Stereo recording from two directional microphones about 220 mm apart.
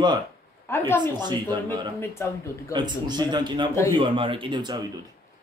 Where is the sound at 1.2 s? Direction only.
20° right (ahead or behind).